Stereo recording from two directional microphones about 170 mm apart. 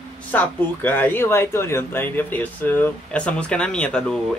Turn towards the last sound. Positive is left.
turn(degrees=5)  # may be behind; listen again after turning